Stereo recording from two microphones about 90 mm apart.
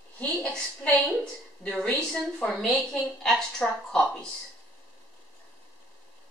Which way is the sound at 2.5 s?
5° left (ahead or behind).